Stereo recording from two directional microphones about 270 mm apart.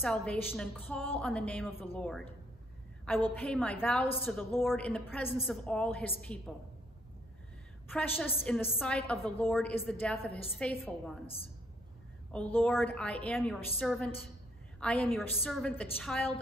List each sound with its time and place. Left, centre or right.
0.0 s a woman's voice: centre
3.3 s a woman's voice: centre
7.9 s a woman's voice: centre
11.2 s a woman's voice: left
12.3 s a woman's voice: centre